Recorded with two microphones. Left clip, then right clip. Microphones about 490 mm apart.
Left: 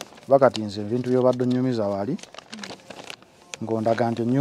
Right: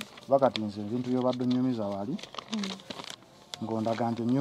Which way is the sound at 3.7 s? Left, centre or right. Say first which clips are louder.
Left 8 dB; left.